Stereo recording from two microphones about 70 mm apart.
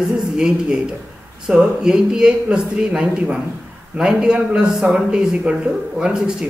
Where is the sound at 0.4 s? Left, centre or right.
Centre.